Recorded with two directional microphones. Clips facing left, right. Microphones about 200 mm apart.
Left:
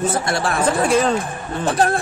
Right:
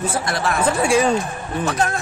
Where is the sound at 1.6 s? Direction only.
30° left (ahead or behind).